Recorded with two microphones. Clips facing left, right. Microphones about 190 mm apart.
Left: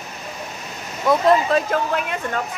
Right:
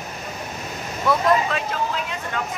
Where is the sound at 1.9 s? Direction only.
55° left (ahead or behind).